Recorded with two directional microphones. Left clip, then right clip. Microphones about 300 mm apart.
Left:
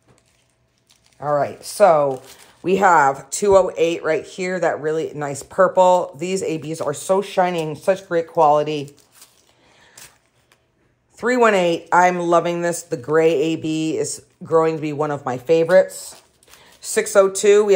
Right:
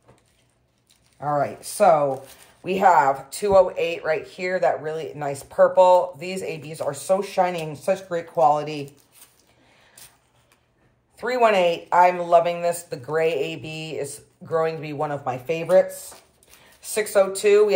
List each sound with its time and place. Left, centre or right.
1.2 s speech: left
11.1 s speech: left
16.8 s speech: left